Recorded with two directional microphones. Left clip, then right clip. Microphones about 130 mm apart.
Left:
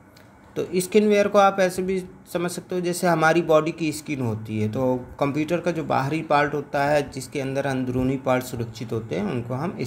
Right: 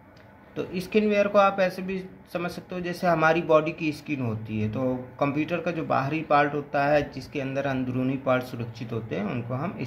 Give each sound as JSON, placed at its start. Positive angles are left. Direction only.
{"t": 0.6, "sound": "speech", "side_deg": 40}